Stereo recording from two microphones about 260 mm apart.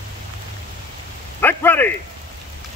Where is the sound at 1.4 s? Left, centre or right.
Centre.